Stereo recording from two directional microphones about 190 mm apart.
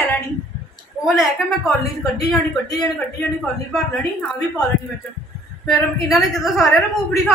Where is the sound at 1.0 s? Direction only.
Centre (ahead or behind).